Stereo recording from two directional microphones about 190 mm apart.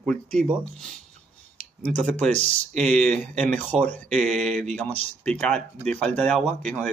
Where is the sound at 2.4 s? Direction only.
35° right (ahead or behind).